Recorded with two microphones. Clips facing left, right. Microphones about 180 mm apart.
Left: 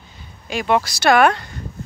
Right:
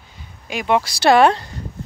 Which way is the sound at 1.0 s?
30° right (ahead or behind).